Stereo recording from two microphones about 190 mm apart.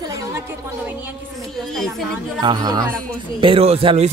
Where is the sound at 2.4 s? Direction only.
20° right (ahead or behind).